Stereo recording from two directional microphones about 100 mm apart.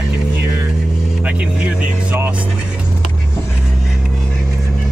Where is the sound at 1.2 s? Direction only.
10° right (ahead or behind).